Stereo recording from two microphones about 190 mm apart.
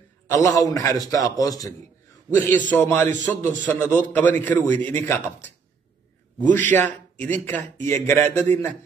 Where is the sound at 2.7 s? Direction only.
10° left (ahead or behind).